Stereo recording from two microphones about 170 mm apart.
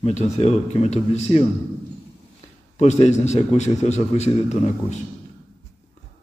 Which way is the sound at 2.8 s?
40° left (ahead or behind).